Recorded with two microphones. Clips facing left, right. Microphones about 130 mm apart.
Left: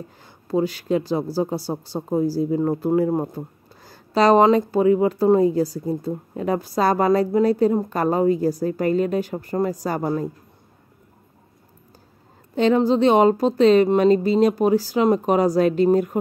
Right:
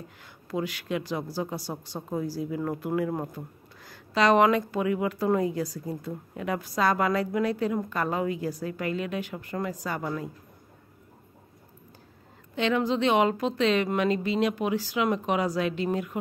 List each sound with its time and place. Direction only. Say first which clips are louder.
0.5 s a woman's voice: left 9 dB; 35° left (ahead or behind)
12.5 s a woman's voice: left 8 dB; 35° left (ahead or behind)